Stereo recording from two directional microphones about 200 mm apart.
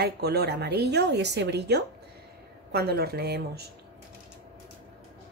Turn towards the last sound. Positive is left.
turn(degrees=-55)  # may be behind; listen again after turning